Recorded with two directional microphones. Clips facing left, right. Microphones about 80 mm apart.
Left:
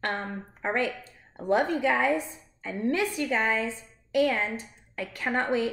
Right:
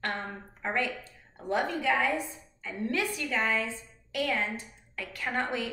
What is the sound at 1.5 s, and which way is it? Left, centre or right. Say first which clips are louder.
A woman's voice: left 4 dB; left.